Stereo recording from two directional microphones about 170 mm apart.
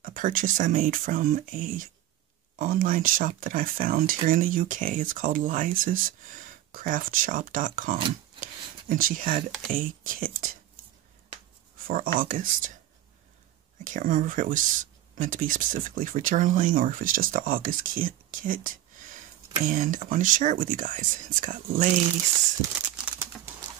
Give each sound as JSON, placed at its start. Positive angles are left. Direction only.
{"t": 0.0, "sound": "speech", "side_deg": -55}
{"t": 11.9, "sound": "speech", "side_deg": -55}
{"t": 13.8, "sound": "speech", "side_deg": -50}
{"t": 22.7, "sound": "bird", "side_deg": -10}